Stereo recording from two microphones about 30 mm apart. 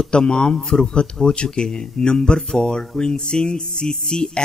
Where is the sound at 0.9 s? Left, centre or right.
Left.